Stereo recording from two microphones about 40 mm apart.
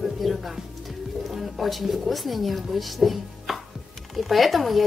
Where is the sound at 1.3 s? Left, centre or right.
Centre.